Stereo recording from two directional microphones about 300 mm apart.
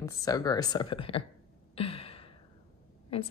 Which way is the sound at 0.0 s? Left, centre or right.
Centre.